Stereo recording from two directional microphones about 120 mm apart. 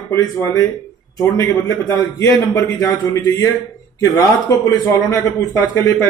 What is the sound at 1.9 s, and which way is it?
A man's voice, 30° left (ahead or behind).